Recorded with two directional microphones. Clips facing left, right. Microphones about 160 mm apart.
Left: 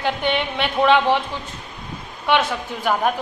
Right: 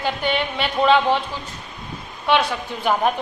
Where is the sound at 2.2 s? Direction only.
20° left (ahead or behind).